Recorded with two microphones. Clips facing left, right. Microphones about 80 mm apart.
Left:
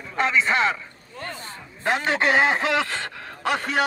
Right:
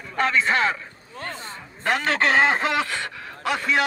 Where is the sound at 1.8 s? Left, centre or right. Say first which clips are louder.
Even; left.